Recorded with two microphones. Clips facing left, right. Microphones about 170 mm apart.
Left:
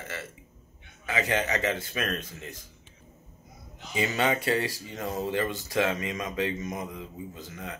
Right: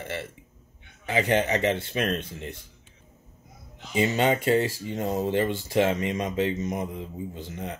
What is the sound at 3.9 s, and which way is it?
Speech, 30° right (ahead or behind).